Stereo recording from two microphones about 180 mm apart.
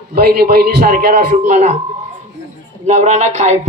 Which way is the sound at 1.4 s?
40° right (ahead or behind).